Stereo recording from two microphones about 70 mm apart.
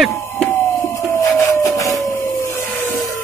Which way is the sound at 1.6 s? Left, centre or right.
Left.